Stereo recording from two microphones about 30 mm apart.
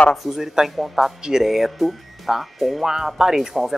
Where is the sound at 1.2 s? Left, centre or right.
Right.